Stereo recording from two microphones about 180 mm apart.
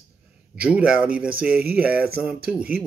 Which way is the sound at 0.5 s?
5° right (ahead or behind).